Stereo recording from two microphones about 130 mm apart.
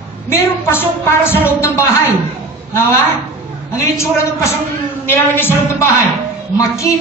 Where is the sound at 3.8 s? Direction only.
20° left (ahead or behind).